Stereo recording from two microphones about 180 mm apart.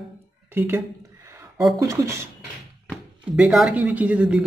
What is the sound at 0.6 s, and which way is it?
Speech, 10° right (ahead or behind).